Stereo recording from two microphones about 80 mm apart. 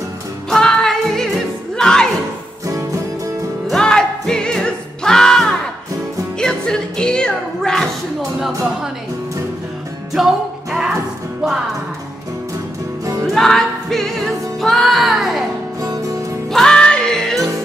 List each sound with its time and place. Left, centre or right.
0.5 s music: centre
2.6 s music: right
3.6 s music: centre
8.2 s music: centre
10.1 s music: centre
13.3 s music: centre
15.8 s music: right
16.5 s music: centre